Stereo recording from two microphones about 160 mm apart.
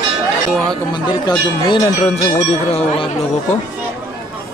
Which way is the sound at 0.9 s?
30° left (ahead or behind).